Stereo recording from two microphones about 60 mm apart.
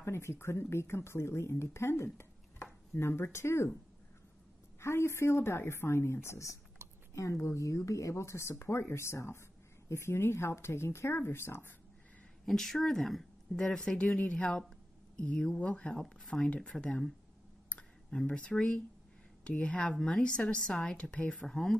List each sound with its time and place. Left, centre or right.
0.0 s speech: left
2.1 s a sound: left
4.7 s speech: left
6.2 s speech: left
6.8 s a sound: right
7.5 s speech: left
12.4 s speech: centre
16.0 s speech: centre
17.6 s a sound: centre
18.2 s speech: centre
21.5 s speech: centre